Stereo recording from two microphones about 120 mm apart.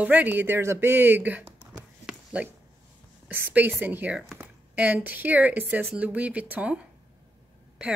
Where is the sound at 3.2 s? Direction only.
15° right (ahead or behind).